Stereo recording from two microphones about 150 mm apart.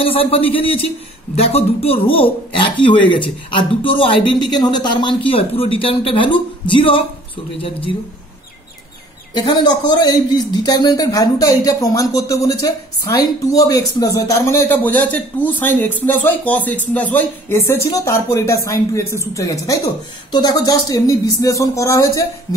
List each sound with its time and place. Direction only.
0.0 s speech: 40° left (ahead or behind)
9.3 s a man's voice: 30° left (ahead or behind)